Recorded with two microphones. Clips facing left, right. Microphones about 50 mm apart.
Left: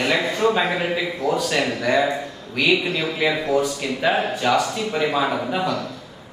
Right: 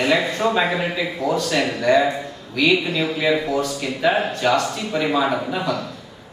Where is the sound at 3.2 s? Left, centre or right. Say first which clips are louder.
Left 1 dB; centre.